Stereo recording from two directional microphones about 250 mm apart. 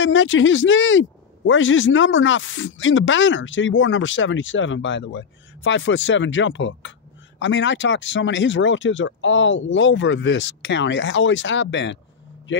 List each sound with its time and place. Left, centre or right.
0.0 s speech: left